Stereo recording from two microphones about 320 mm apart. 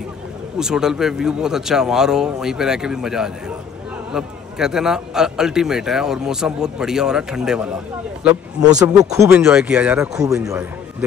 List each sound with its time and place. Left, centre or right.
0.6 s a man's voice: centre